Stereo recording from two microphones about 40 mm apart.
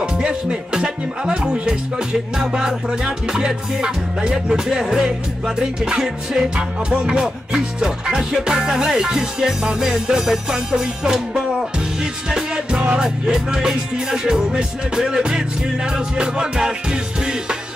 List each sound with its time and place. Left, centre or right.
0.0 s music: right
2.3 s music: centre
12.7 s music: right